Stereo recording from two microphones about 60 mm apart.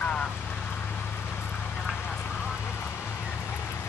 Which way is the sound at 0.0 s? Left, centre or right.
Centre.